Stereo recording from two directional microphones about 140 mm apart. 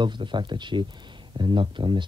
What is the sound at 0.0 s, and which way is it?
Speech, 35° right (ahead or behind).